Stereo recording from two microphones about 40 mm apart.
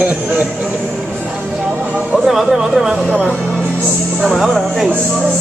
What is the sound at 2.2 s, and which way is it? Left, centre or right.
Speech, centre.